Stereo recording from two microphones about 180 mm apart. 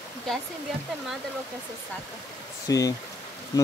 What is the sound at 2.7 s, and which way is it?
Speech, 20° left (ahead or behind).